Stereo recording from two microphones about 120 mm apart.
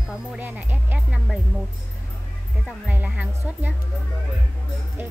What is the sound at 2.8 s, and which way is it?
Speech, 10° right (ahead or behind).